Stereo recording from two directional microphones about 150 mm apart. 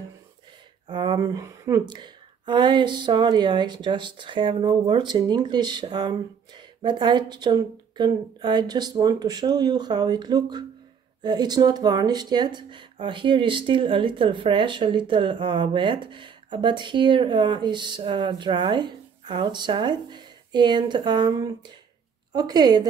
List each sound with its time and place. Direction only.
0.8 s speech: 30° right (ahead or behind)